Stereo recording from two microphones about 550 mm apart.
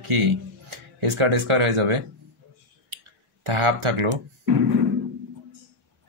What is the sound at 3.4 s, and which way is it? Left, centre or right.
Speech, right.